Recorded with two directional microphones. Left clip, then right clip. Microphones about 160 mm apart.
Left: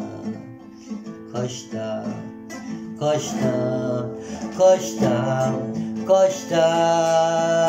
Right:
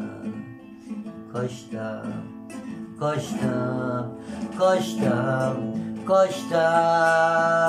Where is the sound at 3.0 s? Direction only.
15° left (ahead or behind).